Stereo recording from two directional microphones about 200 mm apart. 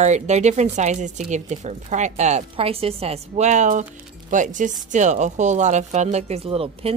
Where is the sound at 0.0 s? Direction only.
35° right (ahead or behind).